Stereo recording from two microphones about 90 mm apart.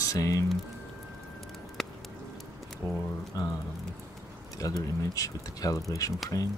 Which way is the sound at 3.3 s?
40° left (ahead or behind).